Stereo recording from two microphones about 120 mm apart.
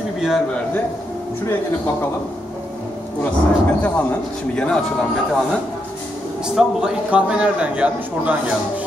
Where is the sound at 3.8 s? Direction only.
10° left (ahead or behind).